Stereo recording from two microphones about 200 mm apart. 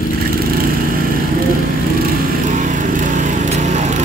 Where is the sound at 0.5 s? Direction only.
45° right (ahead or behind).